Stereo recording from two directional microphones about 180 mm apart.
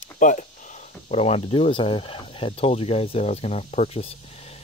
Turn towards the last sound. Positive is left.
turn(degrees=35)  # may be behind; listen again after turning